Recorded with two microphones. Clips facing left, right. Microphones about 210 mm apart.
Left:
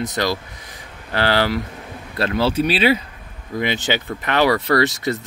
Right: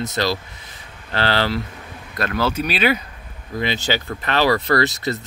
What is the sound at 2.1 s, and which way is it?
Speech, 30° left (ahead or behind).